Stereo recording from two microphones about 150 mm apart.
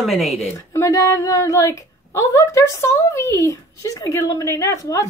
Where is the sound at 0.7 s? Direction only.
20° left (ahead or behind).